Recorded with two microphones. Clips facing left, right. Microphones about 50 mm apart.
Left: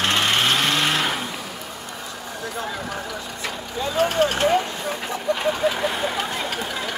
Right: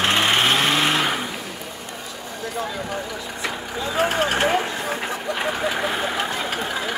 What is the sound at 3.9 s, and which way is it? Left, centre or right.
Vehicle, right.